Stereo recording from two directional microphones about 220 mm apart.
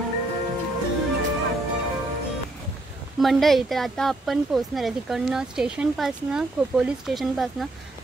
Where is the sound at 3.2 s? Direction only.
Centre (ahead or behind).